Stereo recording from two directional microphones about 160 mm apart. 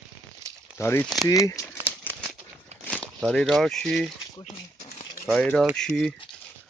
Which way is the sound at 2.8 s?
10° left (ahead or behind).